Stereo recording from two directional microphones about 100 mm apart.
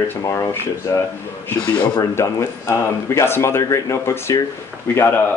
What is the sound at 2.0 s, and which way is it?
Speech, 30° left (ahead or behind).